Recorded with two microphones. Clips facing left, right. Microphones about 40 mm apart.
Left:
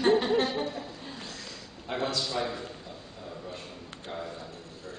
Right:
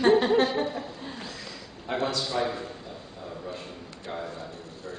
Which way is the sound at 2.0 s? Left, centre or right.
Centre.